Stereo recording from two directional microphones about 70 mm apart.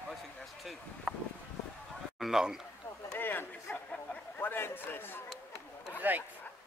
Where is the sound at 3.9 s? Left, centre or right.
Left.